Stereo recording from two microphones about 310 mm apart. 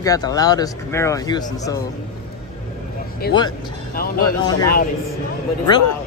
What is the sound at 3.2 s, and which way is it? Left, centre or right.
Speech, left.